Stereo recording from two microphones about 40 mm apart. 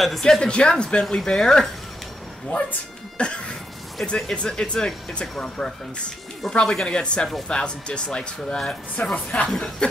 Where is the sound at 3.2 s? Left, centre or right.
Left.